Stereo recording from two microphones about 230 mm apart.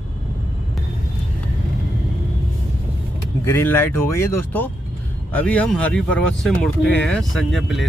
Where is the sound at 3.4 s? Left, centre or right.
Centre.